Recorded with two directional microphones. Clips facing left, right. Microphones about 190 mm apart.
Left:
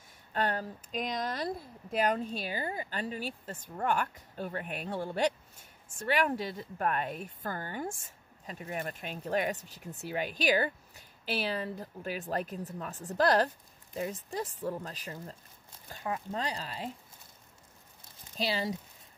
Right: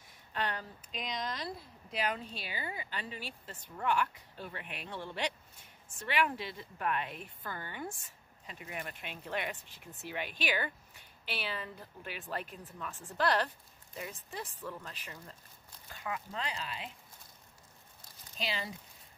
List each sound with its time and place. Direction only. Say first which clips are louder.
0.3 s a woman's voice: left 5 dB; 45° left (ahead or behind)
18.4 s a woman's voice: left 7 dB; 40° left (ahead or behind)